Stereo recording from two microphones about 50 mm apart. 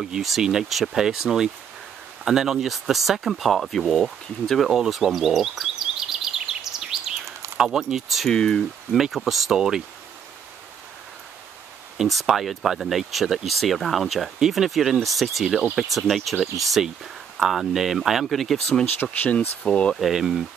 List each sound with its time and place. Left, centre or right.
0.0 s speech: centre
0.4 s speech: centre
4.7 s bird vocalization: centre
7.5 s speech: centre
8.3 s speech: centre
8.9 s speech: centre
12.0 s speech: centre
19.3 s speech: left
20.0 s speech: centre